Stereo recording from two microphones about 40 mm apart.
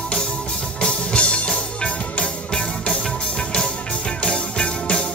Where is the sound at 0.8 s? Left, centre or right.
Left.